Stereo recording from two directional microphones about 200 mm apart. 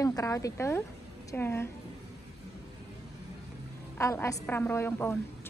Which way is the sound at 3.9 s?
15° left (ahead or behind).